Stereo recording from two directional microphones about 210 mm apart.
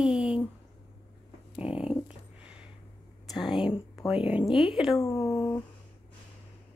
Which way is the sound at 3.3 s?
Centre (ahead or behind).